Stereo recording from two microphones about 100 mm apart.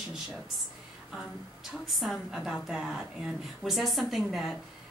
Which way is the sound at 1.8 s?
Centre (ahead or behind).